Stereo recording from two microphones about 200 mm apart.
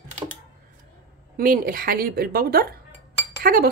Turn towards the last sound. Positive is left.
turn(degrees=-45)  # may be behind; listen again after turning